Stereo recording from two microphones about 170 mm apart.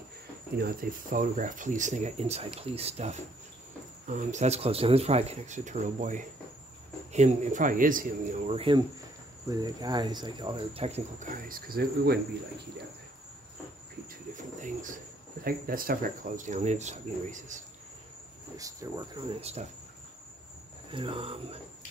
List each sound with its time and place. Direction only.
0.6 s speech: 60° right (ahead or behind)
8.5 s speech: 30° right (ahead or behind); by 12.2 s 65° right (ahead or behind)
14.3 s cricket: 50° right (ahead or behind)
15.4 s speech: 60° right (ahead or behind)
18.6 s speech: 20° right (ahead or behind)
20.9 s speech: 30° right (ahead or behind)